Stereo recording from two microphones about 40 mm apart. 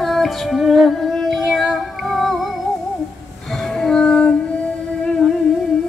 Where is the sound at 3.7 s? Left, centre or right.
Centre.